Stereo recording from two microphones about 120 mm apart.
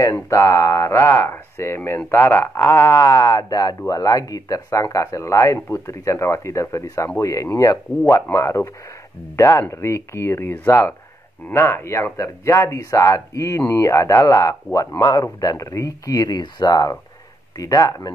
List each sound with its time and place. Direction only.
0.0 s speech: 25° left (ahead or behind)